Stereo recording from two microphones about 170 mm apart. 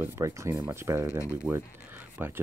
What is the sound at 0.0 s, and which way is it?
Speech, 15° right (ahead or behind).